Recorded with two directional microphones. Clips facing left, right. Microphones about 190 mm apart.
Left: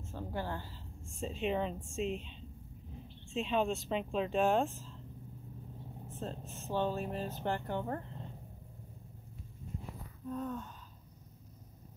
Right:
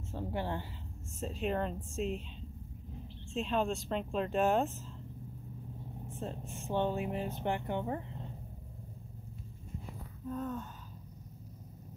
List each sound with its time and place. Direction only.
0.1 s a woman's voice: 25° right (ahead or behind)
1.2 s speech: centre (ahead or behind)
3.3 s speech: centre (ahead or behind)
6.0 s vehicle: 10° right (ahead or behind)
6.7 s speech: 20° right (ahead or behind)
10.2 s speech: centre (ahead or behind)